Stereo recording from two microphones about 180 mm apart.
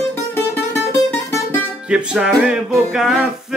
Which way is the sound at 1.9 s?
5° right (ahead or behind).